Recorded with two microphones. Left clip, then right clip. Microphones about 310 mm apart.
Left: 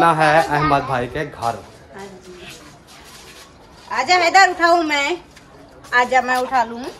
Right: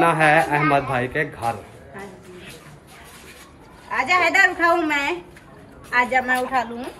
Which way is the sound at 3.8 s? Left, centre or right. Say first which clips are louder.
Left 3 dB; centre.